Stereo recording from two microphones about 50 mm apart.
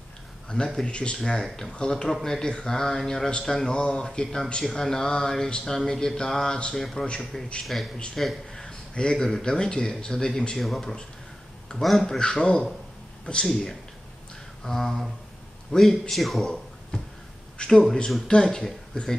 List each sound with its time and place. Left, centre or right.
0.5 s speech: centre
3.3 s speech: centre
8.6 s speech: centre
10.6 s speech: centre
11.7 s speech: centre
14.6 s speech: centre
17.6 s speech: centre